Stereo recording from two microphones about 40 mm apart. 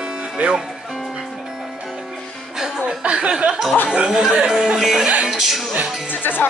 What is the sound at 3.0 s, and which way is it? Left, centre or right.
Chuckle, right.